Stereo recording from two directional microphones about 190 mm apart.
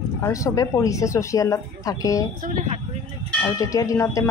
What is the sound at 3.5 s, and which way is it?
Speech, 15° left (ahead or behind).